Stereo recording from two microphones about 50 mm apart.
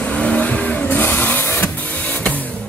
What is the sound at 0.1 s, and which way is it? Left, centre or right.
Vehicle, left.